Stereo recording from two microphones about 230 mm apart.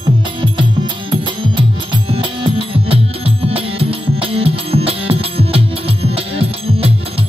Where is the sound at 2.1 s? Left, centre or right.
Right.